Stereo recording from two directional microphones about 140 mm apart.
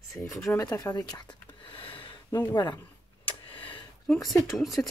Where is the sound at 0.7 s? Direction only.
25° left (ahead or behind).